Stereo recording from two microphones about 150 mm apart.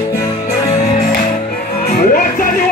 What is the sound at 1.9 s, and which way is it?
Music, 70° left (ahead or behind).